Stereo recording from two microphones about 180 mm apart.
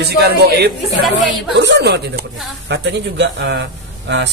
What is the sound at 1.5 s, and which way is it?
Speech, 70° right (ahead or behind).